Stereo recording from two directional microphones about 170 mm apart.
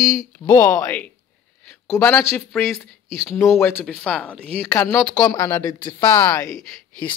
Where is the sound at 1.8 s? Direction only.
5° left (ahead or behind).